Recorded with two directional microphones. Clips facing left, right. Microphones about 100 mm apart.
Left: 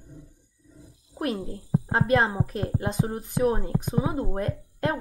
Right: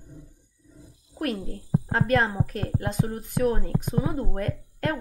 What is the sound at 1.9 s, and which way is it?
Speech, 20° left (ahead or behind).